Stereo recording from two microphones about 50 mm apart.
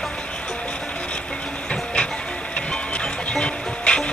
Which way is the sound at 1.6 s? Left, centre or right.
Left.